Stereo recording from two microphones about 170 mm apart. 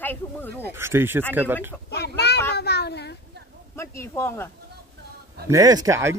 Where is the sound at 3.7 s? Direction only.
15° left (ahead or behind).